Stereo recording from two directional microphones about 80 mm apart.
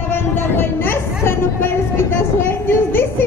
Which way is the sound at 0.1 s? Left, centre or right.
Left.